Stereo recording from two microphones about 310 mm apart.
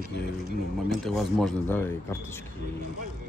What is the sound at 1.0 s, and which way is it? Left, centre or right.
Speech, centre.